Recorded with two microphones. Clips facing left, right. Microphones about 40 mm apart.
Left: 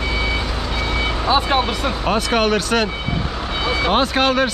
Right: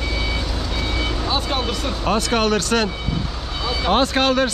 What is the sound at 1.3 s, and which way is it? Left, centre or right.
Speech, left.